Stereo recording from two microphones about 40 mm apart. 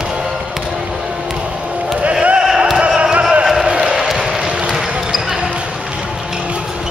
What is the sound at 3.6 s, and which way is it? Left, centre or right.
Basketball bounce, right.